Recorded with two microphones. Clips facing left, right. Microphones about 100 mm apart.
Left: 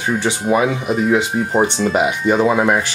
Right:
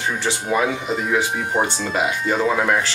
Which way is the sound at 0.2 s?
15° left (ahead or behind).